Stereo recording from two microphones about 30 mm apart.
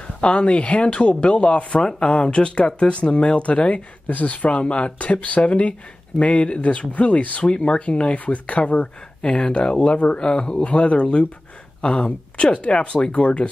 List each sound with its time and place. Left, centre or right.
0.0 s speech: left
4.1 s speech: left
4.9 s speech: left
10.6 s speech: left